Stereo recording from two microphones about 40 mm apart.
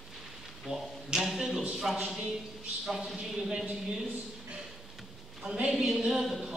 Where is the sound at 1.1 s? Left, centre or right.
Centre.